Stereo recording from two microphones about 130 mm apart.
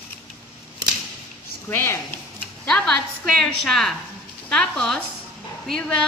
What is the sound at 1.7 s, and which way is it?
Speech, 20° left (ahead or behind).